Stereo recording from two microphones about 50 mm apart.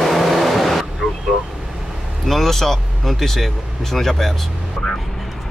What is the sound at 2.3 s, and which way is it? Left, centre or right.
Vehicle, centre.